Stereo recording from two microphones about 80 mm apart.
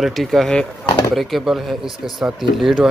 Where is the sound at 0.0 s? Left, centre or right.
Centre.